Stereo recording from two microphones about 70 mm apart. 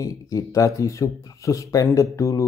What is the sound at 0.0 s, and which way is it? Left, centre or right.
Speech, left.